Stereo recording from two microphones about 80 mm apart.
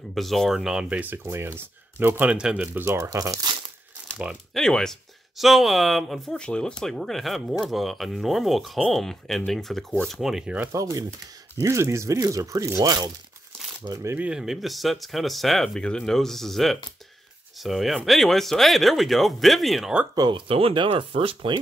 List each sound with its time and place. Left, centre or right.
0.1 s speech: centre
0.8 s speech: right
1.2 s speech: right
2.2 s speech: centre
2.8 s speech: right
3.2 s speech: right
4.6 s speech: centre
10.7 s speech: right
11.6 s speech: right
14.1 s speech: centre
14.4 s speech: centre
20.2 s speech: right